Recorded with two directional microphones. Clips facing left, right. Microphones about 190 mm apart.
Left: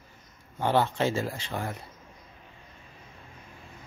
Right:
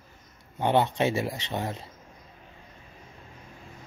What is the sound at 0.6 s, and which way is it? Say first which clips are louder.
Speech: right 1 dB; 20° right (ahead or behind).